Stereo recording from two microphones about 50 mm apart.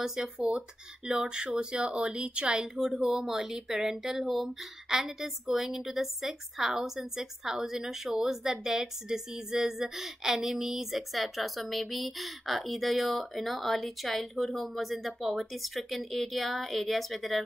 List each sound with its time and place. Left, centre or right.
0.0 s speech: centre
0.5 s speech: right; by 17.4 s centre